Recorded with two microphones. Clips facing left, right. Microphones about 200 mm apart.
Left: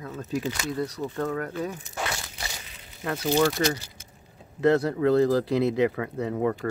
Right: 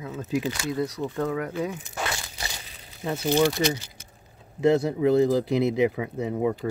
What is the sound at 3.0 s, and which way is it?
Speech, 15° right (ahead or behind).